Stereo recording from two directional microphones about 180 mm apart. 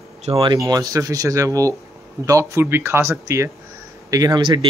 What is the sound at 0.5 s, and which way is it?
A man's voice, 20° right (ahead or behind).